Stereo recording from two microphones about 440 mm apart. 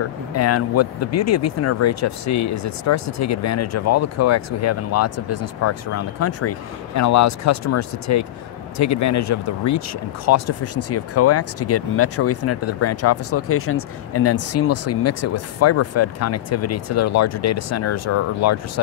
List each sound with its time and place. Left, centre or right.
0.3 s speech: left